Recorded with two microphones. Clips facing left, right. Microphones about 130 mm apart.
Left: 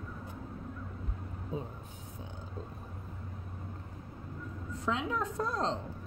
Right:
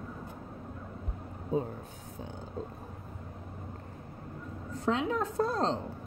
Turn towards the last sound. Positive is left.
turn(degrees=-35)  # may be behind; listen again after turning